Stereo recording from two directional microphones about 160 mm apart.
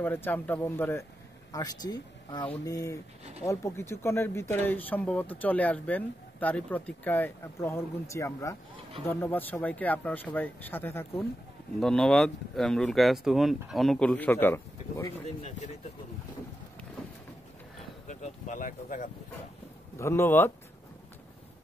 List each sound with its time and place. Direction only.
0.0 s speech: 10° left (ahead or behind)
11.8 s speech: 5° left (ahead or behind)
18.0 s speech: 50° left (ahead or behind)
20.0 s speech: 15° left (ahead or behind)